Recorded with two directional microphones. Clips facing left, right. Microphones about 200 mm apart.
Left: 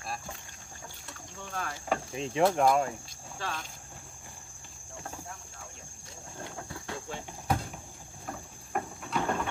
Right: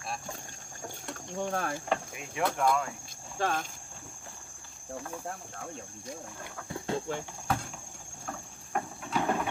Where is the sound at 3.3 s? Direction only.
50° right (ahead or behind).